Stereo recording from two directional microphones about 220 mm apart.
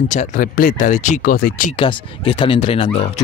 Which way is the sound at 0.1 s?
35° left (ahead or behind).